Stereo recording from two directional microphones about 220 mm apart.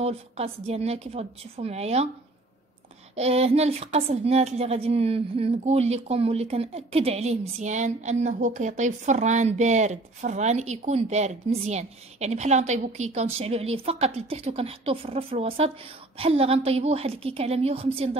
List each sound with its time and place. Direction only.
0.0 s a woman's voice: 25° right (ahead or behind)
3.2 s a woman's voice: 30° right (ahead or behind)